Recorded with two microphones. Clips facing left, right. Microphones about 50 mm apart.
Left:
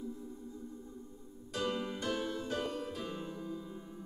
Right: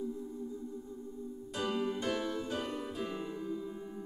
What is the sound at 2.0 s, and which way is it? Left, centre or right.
Music, right.